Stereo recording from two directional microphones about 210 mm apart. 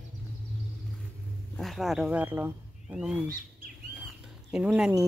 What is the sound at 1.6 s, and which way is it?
Speech, centre (ahead or behind).